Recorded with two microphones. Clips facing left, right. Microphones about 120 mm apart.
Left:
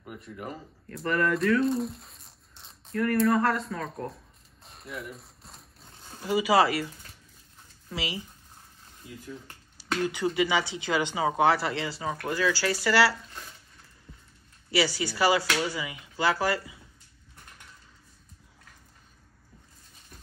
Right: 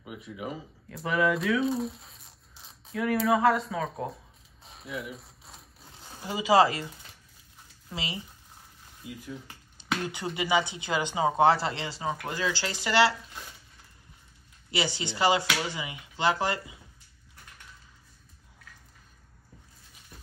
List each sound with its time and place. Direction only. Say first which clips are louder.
0.0 s speech: right 1 dB; 5° right (ahead or behind)
4.6 s a sound: right 2 dB; centre (ahead or behind)
6.2 s speech: even; 25° right (ahead or behind)
7.9 s speech: left 2 dB; 25° right (ahead or behind)
9.0 s speech: right 3 dB; 10° right (ahead or behind)
10.0 s speech: left 9 dB; 20° right (ahead or behind)
14.7 s speech: left 4 dB; 20° right (ahead or behind)